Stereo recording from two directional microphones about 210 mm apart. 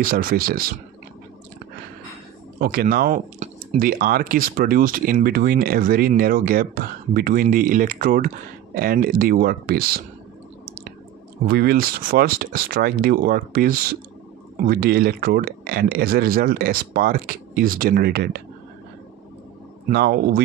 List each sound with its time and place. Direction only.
0.0 s speech: 45° right (ahead or behind)
2.6 s speech: 45° right (ahead or behind)
11.4 s speech: 45° right (ahead or behind)
19.9 s speech: 50° right (ahead or behind)